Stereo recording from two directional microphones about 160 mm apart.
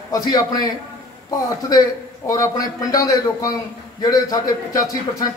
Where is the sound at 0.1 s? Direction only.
25° left (ahead or behind).